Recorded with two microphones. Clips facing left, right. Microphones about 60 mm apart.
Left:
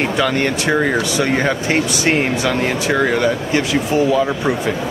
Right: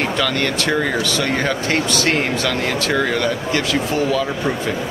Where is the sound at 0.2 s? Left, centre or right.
Centre.